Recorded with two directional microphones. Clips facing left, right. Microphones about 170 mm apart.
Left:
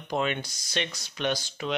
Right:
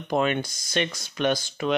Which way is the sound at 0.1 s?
50° right (ahead or behind).